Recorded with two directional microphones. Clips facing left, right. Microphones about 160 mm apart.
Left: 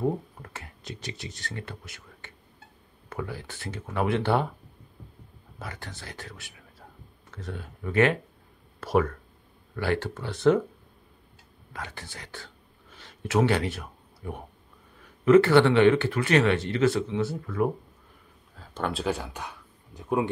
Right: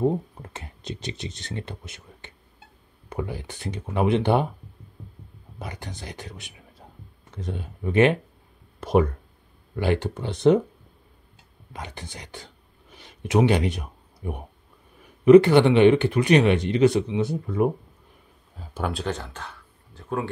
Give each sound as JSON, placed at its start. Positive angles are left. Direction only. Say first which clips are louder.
{"t": 0.0, "sound": "speech", "louder": "right 4 dB", "side_deg": -20}
{"t": 5.6, "sound": "speech", "louder": "right 3 dB", "side_deg": -20}
{"t": 11.7, "sound": "whispering", "louder": "right 2 dB", "side_deg": -20}
{"t": 15.2, "sound": "speech", "louder": "right 4 dB", "side_deg": -15}
{"t": 18.6, "sound": "speech", "louder": "right 1 dB", "side_deg": -10}